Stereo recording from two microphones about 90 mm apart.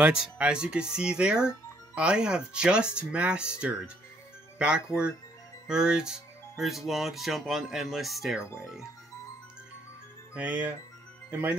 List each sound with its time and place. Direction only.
0.0 s speech: 10° right (ahead or behind)
4.6 s speech: 10° right (ahead or behind)
10.3 s speech: 15° right (ahead or behind)